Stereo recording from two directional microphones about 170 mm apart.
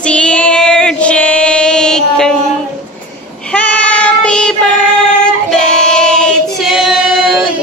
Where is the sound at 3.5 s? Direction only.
10° left (ahead or behind).